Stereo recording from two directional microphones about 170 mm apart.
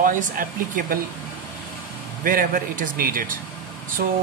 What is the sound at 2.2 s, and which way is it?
Speech, 55° right (ahead or behind).